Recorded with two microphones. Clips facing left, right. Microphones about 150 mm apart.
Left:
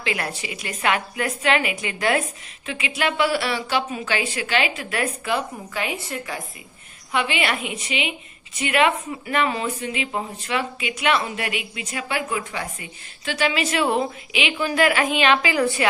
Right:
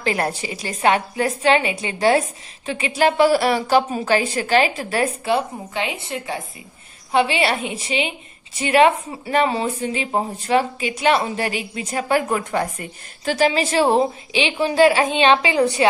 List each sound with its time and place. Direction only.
0.0 s a woman's voice: 40° right (ahead or behind); by 15.9 s 20° right (ahead or behind)